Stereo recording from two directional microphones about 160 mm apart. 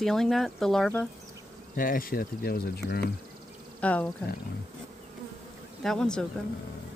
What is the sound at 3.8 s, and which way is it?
Speech, 10° left (ahead or behind).